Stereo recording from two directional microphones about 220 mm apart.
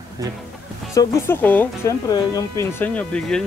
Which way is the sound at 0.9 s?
15° left (ahead or behind).